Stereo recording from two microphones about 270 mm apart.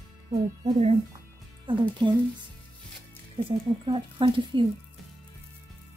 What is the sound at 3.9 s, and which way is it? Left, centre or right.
Speech, centre.